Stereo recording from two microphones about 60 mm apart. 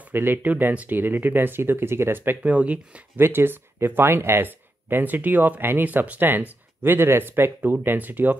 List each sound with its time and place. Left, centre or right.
0.1 s speech: right
2.4 s speech: right
3.2 s speech: right